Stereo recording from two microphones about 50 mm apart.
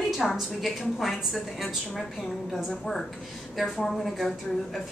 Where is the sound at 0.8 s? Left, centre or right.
Centre.